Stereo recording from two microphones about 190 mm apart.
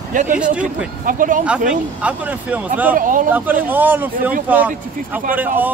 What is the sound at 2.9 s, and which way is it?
Speech, 45° right (ahead or behind).